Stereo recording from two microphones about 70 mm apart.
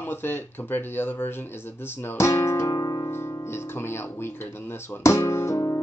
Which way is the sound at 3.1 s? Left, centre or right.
Left.